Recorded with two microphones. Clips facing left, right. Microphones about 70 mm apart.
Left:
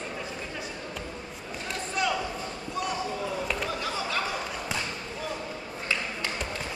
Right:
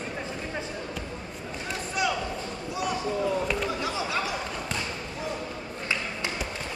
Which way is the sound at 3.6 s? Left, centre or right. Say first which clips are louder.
Right 2 dB; centre.